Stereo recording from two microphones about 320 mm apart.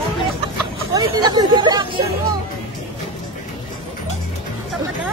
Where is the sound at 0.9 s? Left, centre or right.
Centre.